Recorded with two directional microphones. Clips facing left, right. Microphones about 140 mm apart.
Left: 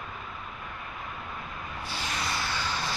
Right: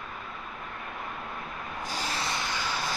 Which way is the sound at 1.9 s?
40° right (ahead or behind).